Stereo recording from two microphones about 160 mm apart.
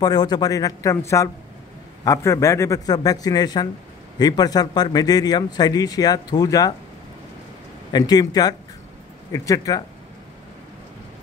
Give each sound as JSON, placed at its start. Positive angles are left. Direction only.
{"t": 0.0, "sound": "a man's voice", "side_deg": 25}
{"t": 7.9, "sound": "a man's voice", "side_deg": 25}